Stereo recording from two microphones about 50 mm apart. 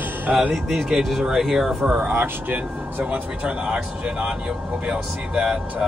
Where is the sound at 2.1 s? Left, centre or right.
Right.